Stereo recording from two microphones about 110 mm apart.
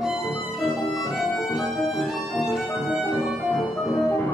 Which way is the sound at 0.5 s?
Centre (ahead or behind).